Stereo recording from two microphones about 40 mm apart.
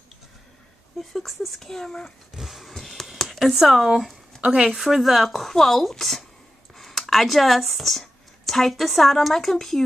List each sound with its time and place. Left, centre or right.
0.9 s a woman's voice: centre
1.6 s speech: centre
2.3 s a sound: centre
3.1 s speech: centre
4.3 s a sound: centre
4.6 s a woman's voice: centre